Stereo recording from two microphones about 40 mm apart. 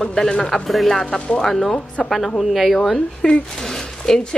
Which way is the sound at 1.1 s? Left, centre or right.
Left.